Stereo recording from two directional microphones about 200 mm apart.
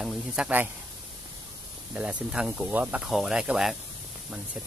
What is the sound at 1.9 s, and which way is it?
Speech, 5° right (ahead or behind).